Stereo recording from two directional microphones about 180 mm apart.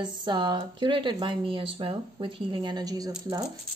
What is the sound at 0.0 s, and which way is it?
Speech, 25° right (ahead or behind).